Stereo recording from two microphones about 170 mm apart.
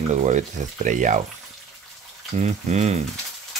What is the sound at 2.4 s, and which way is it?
Speech, 40° right (ahead or behind).